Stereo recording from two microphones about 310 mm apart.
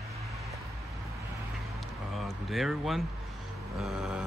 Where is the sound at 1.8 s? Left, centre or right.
Centre.